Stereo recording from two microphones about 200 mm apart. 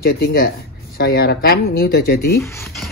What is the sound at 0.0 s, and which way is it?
Speech, 50° left (ahead or behind).